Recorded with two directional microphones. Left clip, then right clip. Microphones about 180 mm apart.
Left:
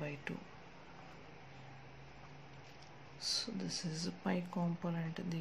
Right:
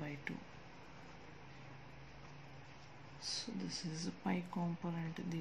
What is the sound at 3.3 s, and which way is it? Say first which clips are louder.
Speech: left 5 dB; 20° left (ahead or behind).